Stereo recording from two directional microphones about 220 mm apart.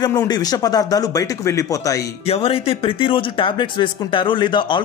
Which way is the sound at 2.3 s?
25° left (ahead or behind).